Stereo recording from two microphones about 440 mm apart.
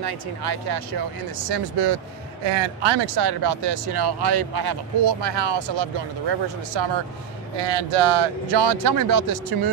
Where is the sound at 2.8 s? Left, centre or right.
Right.